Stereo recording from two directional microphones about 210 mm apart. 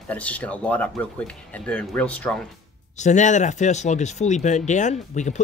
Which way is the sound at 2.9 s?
35° left (ahead or behind).